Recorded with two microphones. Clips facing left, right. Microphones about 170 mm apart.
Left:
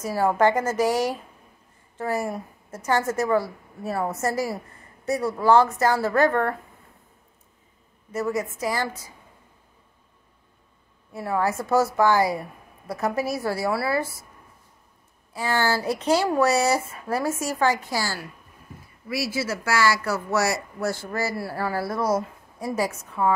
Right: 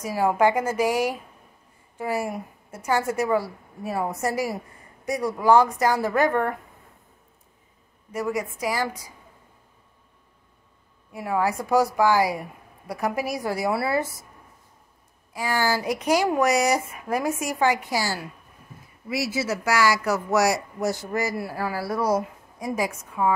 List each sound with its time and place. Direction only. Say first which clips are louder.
0.0 s speech: even; 10° right (ahead or behind)
8.1 s speech: left 1 dB; 10° right (ahead or behind)
11.1 s speech: even; 15° right (ahead or behind)
15.3 s speech: left 1 dB; 10° right (ahead or behind)